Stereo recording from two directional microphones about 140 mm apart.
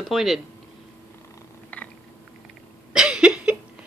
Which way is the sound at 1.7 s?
10° left (ahead or behind).